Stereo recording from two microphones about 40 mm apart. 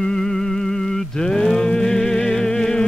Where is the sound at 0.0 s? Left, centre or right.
Centre.